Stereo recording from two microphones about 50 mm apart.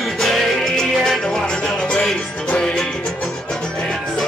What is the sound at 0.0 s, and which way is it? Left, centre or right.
Music, centre.